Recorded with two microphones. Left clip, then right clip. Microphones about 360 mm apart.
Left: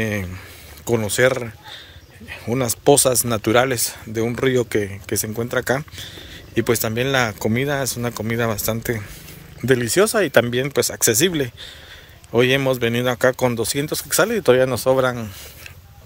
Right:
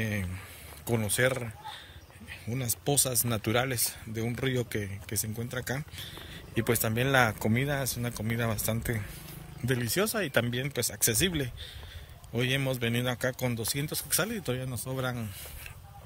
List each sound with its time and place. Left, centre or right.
0.0 s speech: centre